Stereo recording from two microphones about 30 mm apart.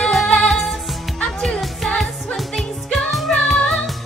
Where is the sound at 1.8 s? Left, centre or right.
Left.